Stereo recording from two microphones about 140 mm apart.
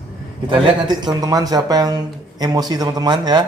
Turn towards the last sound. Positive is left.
turn(degrees=-30)  # may be behind; listen again after turning